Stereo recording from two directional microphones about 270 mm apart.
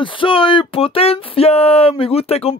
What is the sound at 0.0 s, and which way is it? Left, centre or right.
Speech, centre.